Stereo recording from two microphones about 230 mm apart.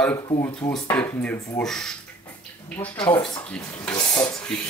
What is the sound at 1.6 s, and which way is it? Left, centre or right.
Speech, centre.